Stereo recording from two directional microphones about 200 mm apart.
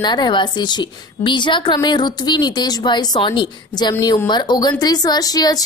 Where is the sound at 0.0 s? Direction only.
20° left (ahead or behind).